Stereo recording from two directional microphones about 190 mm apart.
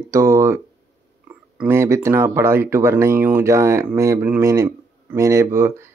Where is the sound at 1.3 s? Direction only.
10° right (ahead or behind).